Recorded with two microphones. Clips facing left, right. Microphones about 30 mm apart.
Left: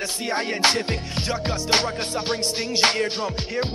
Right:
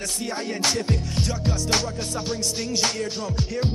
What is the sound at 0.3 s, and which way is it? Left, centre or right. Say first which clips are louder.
Music: left 5 dB; left.